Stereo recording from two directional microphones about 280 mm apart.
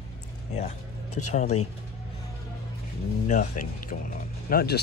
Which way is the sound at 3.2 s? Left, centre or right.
Left.